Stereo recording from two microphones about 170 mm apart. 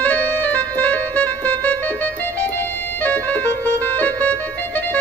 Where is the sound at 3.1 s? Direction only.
10° left (ahead or behind).